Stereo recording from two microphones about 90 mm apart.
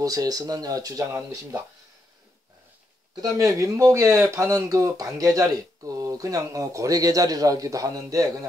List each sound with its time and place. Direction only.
0.0 s speech: 45° right (ahead or behind)
3.2 s speech: 40° right (ahead or behind)